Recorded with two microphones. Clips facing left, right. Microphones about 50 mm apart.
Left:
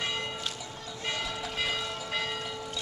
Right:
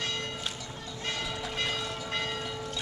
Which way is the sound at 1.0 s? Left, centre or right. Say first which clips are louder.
Left 1 dB; centre.